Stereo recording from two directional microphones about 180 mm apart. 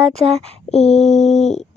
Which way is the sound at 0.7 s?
35° left (ahead or behind).